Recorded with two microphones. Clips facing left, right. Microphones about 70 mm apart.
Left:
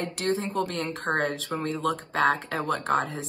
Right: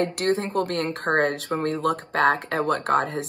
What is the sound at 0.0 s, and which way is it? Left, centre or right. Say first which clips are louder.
Speech: right 5 dB; right.